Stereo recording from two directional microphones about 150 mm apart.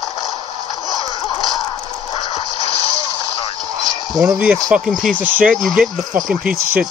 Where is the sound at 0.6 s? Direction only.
25° left (ahead or behind).